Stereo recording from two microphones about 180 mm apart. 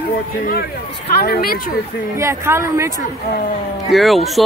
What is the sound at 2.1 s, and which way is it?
Speech, 15° right (ahead or behind).